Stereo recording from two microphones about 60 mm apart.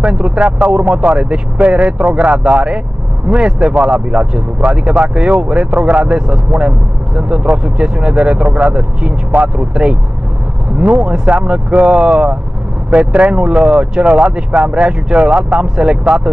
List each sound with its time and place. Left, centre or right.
0.2 s speech: centre
11.0 s speech: centre